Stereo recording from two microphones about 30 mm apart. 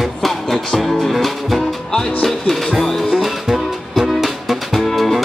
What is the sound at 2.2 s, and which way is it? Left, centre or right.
Music, centre.